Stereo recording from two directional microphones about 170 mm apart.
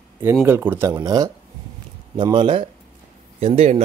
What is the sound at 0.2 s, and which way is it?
A man's voice, 15° right (ahead or behind).